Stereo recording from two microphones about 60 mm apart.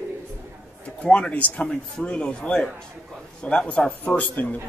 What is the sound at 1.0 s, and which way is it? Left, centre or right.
A man's voice, centre.